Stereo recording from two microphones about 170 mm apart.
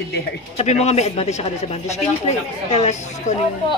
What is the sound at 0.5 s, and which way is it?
A man's voice, 40° left (ahead or behind).